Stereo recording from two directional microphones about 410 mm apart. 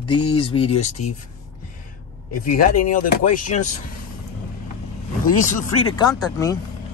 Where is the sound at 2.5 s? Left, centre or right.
Centre.